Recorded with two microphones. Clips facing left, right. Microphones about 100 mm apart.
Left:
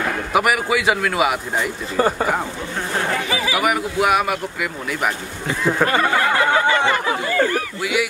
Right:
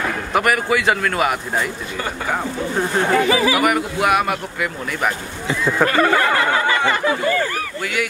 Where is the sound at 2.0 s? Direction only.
35° left (ahead or behind).